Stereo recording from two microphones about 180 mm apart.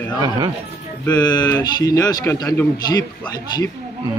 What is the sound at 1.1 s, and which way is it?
Speech, 25° left (ahead or behind).